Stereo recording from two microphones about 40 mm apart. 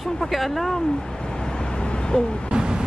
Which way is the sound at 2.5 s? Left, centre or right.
Centre.